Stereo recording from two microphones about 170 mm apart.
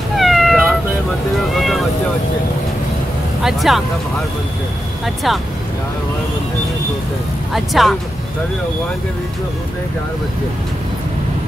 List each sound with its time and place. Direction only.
0.1 s cat: centre (ahead or behind)
1.5 s vehicle: centre (ahead or behind)
3.4 s speech: centre (ahead or behind)
5.0 s speech: centre (ahead or behind)
7.5 s speech: centre (ahead or behind)